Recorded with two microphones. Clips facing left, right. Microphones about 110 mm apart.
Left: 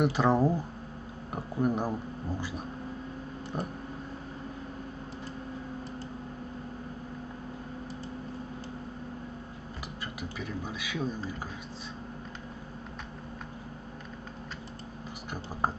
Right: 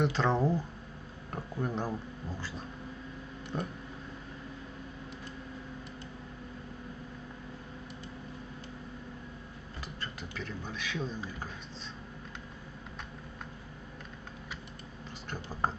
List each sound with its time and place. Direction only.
0.0 s speech: 10° left (ahead or behind)
10.3 s speech: 10° left (ahead or behind)